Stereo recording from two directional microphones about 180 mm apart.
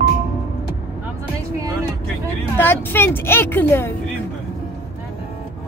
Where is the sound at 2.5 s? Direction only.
10° left (ahead or behind).